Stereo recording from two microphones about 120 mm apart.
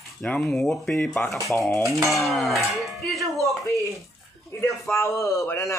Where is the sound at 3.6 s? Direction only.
25° left (ahead or behind).